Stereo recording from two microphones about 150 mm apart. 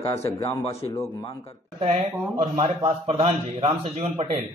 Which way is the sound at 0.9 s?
15° left (ahead or behind).